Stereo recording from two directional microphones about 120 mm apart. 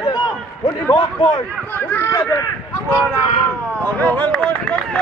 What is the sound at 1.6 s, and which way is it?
Speech, 15° left (ahead or behind).